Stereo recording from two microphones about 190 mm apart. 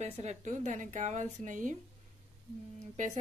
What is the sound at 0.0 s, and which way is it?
Speech, 35° right (ahead or behind).